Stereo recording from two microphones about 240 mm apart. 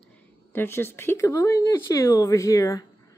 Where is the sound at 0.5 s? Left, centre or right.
Centre.